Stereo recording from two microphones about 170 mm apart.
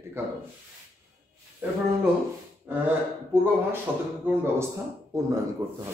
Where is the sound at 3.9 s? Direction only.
10° right (ahead or behind).